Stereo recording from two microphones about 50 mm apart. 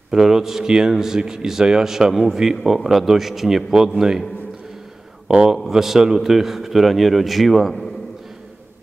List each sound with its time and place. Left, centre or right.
0.1 s a man's voice: centre
5.3 s a man's voice: centre